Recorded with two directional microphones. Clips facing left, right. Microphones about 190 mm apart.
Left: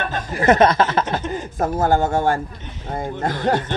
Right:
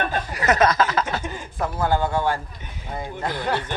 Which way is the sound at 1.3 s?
45° left (ahead or behind).